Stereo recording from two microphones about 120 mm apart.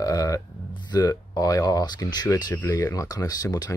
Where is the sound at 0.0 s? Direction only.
30° left (ahead or behind).